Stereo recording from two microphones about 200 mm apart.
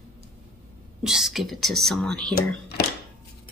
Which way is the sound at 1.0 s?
Centre (ahead or behind).